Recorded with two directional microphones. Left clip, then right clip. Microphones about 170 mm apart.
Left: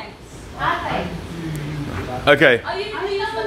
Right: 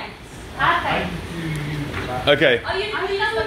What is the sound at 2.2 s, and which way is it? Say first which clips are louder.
Speech: left 3 dB; 30° left (ahead or behind).